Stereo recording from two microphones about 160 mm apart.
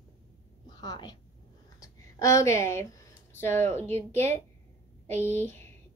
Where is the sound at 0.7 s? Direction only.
25° left (ahead or behind).